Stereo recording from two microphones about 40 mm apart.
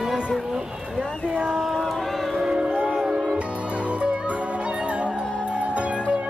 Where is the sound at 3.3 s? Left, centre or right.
Right.